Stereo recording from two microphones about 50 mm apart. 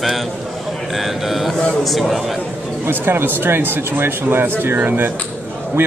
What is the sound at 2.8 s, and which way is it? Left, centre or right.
Speech, right.